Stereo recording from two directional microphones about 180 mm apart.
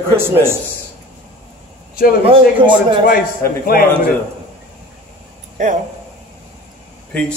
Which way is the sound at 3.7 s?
55° left (ahead or behind).